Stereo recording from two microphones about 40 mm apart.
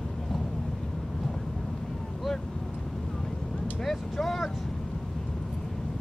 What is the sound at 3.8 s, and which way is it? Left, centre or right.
Vehicle, centre.